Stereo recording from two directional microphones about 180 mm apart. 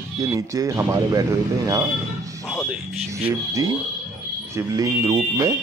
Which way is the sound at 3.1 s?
15° right (ahead or behind).